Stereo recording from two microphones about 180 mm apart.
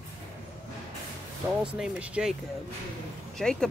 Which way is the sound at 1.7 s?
5° right (ahead or behind).